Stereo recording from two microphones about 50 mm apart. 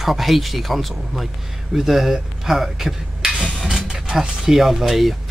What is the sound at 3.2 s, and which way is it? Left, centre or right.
Filing, centre.